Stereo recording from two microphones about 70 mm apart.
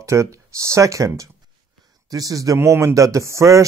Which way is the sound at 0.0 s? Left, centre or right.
Right.